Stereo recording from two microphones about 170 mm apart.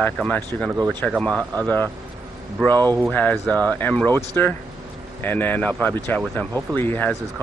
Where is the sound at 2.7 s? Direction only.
10° left (ahead or behind).